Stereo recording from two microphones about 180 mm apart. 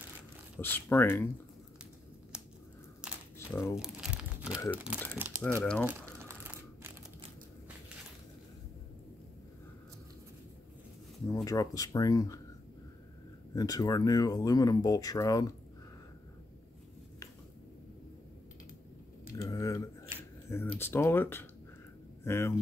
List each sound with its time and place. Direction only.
0.6 s speech: 10° left (ahead or behind)
3.0 s a sound: 5° right (ahead or behind)
3.6 s crumpling: 5° right (ahead or behind)
4.6 s speech: 5° right (ahead or behind)
5.4 s speech: 10° left (ahead or behind)
5.9 s crumpling: 10° right (ahead or behind)
11.4 s speech: 20° left (ahead or behind)
13.6 s speech: 20° left (ahead or behind)
19.3 s a sound: 20° left (ahead or behind)
20.4 s speech: 15° left (ahead or behind)